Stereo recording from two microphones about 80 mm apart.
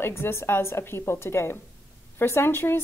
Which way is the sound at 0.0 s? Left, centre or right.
Left.